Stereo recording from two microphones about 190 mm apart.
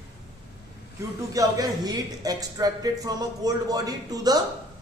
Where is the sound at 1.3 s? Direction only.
20° right (ahead or behind).